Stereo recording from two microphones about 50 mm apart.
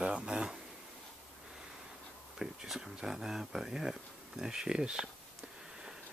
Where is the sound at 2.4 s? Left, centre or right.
Centre.